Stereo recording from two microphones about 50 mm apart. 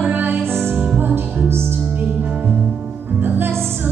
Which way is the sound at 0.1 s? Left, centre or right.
Right.